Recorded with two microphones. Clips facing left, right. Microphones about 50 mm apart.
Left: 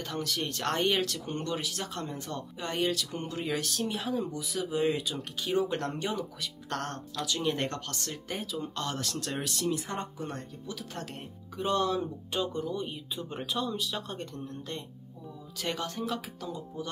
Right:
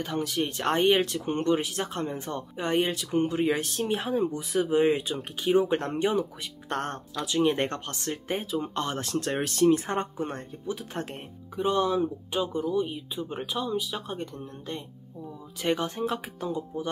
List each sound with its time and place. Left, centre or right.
0.0 s speech: centre
11.5 s speech: centre